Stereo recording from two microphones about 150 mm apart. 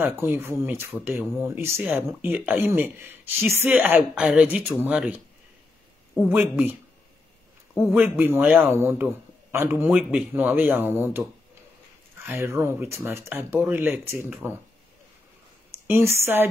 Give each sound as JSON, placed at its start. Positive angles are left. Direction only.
{"t": 0.0, "sound": "speech", "side_deg": -15}
{"t": 6.2, "sound": "speech", "side_deg": -10}
{"t": 7.8, "sound": "speech", "side_deg": -10}
{"t": 12.3, "sound": "speech", "side_deg": -20}
{"t": 15.9, "sound": "speech", "side_deg": -15}